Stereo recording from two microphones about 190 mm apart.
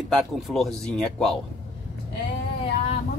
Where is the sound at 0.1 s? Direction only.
Centre (ahead or behind).